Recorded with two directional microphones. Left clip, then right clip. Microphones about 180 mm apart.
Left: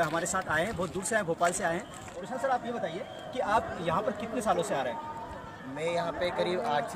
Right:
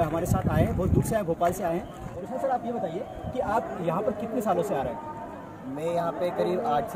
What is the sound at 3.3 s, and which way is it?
Speech, 15° left (ahead or behind).